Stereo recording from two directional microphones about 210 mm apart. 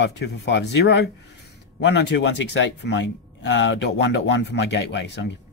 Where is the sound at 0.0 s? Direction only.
55° left (ahead or behind).